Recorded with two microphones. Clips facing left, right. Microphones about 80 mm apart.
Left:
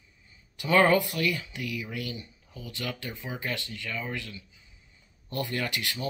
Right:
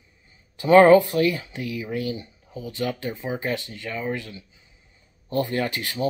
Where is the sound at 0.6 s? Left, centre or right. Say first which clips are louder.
Right 9 dB; right.